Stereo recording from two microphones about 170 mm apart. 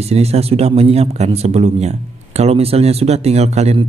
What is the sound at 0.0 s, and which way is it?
A man's voice, 40° right (ahead or behind).